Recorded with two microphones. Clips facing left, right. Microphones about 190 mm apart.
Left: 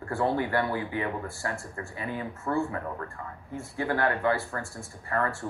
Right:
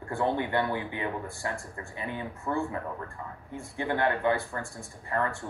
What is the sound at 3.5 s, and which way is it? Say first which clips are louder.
Speech: left 1 dB; 20° right (ahead or behind).